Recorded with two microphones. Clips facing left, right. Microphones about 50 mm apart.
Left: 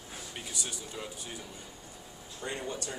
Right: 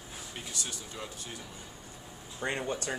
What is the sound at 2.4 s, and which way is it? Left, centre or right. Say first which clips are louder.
Speech: right 4 dB; right.